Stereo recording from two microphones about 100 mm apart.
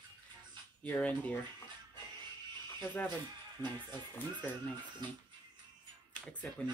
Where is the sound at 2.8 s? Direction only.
20° left (ahead or behind).